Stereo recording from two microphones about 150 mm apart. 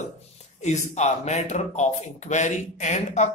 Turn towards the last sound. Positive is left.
turn(degrees=50)  # may be behind; listen again after turning